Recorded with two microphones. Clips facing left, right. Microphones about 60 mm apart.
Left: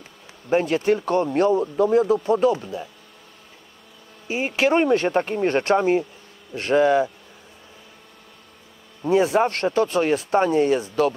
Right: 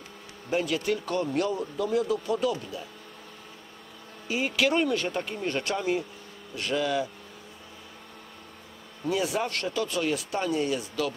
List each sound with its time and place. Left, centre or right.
0.5 s speech: left
4.3 s speech: left
9.0 s speech: left